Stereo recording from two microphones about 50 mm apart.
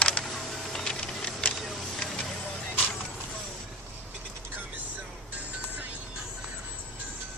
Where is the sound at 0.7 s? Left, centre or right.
Centre.